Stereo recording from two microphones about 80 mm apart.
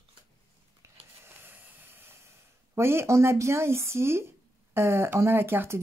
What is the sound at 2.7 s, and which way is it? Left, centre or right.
Speech, right.